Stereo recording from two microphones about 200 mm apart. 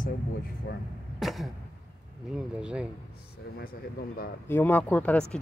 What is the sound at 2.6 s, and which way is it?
Speech, 5° right (ahead or behind).